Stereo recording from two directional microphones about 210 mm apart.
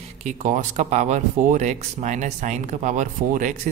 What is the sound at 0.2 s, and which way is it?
Speech, 35° right (ahead or behind).